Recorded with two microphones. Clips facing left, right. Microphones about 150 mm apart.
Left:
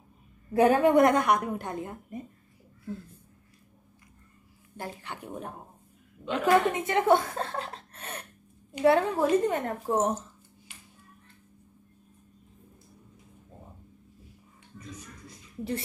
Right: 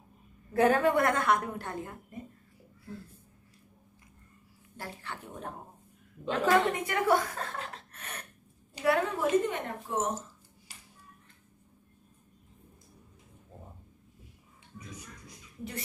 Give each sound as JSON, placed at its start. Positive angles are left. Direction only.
{"t": 0.5, "sound": "a woman's voice", "side_deg": 15}
{"t": 4.7, "sound": "a woman's voice", "side_deg": 20}
{"t": 6.2, "sound": "a woman's voice", "side_deg": -35}
{"t": 6.7, "sound": "a woman's voice", "side_deg": 25}
{"t": 14.8, "sound": "music", "side_deg": -10}